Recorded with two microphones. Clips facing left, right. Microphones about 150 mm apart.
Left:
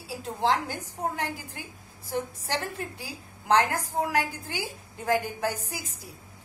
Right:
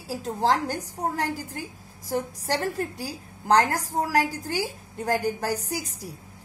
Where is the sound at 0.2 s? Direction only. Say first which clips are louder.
Right 2 dB; 40° right (ahead or behind).